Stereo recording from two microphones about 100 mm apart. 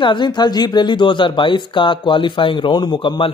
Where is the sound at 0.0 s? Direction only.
50° left (ahead or behind).